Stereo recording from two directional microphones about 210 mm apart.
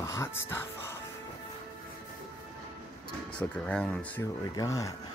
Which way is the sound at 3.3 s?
5° left (ahead or behind).